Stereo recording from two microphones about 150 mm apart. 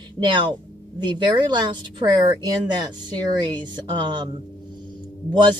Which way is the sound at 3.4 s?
30° right (ahead or behind).